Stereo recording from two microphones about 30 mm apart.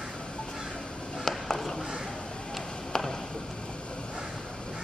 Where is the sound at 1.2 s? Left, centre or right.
Centre.